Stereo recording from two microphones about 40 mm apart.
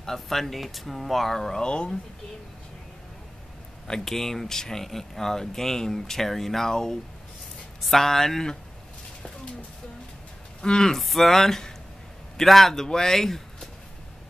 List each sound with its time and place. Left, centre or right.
0.0 s speech: centre
1.6 s speech: left
4.0 s speech: centre
10.6 s speech: centre
11.0 s speech: centre